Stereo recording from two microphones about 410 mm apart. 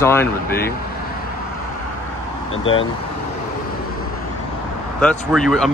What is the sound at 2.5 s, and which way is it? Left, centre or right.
Speech, left.